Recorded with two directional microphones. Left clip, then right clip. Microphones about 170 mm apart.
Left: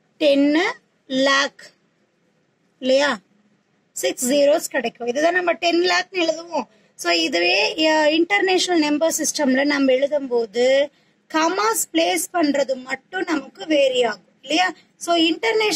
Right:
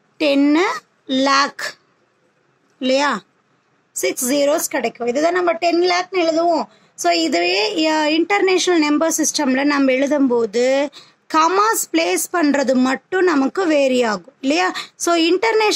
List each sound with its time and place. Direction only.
0.2 s a woman's voice: 45° right (ahead or behind)
2.8 s a woman's voice: 45° right (ahead or behind)